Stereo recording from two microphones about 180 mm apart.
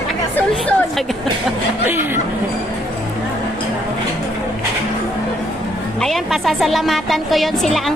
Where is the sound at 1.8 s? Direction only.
10° right (ahead or behind).